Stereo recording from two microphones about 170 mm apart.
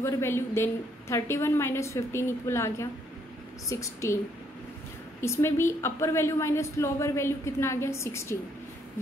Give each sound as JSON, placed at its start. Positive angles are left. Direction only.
{"t": 0.0, "sound": "a woman's voice", "side_deg": 15}
{"t": 5.2, "sound": "a woman's voice", "side_deg": 15}